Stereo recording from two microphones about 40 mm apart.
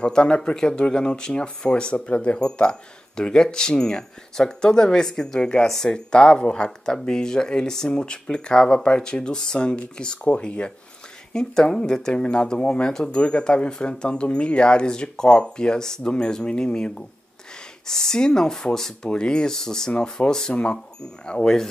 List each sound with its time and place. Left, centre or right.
0.0 s speech: left
11.3 s speech: centre